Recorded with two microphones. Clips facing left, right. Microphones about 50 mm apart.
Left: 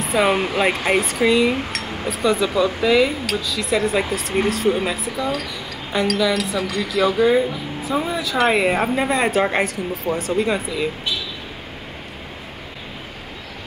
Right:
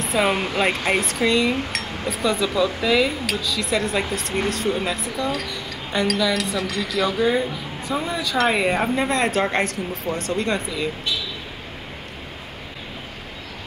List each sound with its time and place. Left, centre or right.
0.0 s speech: centre